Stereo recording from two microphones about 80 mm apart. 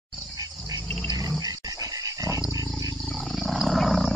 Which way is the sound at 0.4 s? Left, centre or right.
Right.